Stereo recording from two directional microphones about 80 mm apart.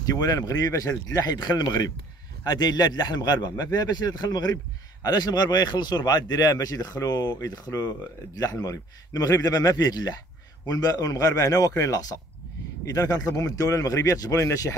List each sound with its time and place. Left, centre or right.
0.0 s speech: left